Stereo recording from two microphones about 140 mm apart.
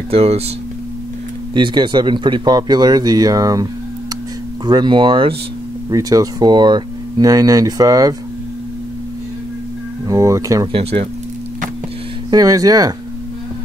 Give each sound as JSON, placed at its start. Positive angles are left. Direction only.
{"t": 0.1, "sound": "speech", "side_deg": -45}
{"t": 1.5, "sound": "speech", "side_deg": -35}
{"t": 4.6, "sound": "speech", "side_deg": -35}
{"t": 10.0, "sound": "speech", "side_deg": -25}
{"t": 10.7, "sound": "speech", "side_deg": -45}
{"t": 12.3, "sound": "speech", "side_deg": -25}